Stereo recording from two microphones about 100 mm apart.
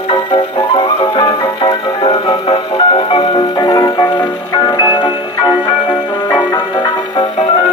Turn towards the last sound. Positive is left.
turn(degrees=50)  # may be behind; listen again after turning